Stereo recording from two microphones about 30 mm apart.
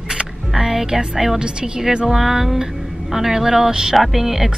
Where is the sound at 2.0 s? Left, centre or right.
Centre.